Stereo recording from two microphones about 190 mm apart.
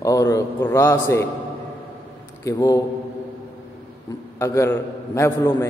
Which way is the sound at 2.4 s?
15° left (ahead or behind).